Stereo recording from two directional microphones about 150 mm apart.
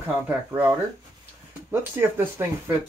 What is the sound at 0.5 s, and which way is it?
Speech, 15° right (ahead or behind).